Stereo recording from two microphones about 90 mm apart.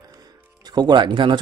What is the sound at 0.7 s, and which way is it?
Speech, 55° right (ahead or behind).